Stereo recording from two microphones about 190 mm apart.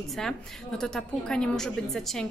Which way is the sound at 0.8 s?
5° left (ahead or behind).